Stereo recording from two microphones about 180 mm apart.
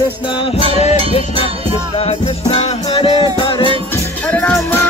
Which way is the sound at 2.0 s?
35° left (ahead or behind).